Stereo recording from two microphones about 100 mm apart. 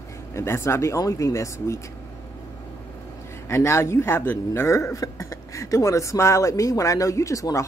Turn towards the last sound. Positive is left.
turn(degrees=30)  # may be behind; listen again after turning